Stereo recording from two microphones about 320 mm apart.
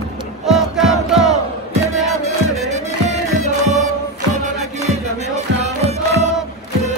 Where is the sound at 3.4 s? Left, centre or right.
Right.